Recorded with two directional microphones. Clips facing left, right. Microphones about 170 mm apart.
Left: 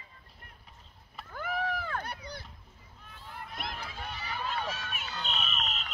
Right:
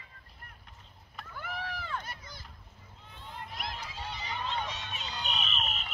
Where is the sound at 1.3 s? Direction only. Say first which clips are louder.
Left 6 dB; 55° left (ahead or behind).